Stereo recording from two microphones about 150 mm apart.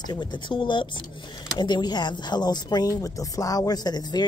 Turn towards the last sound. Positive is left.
turn(degrees=30)  # may be behind; listen again after turning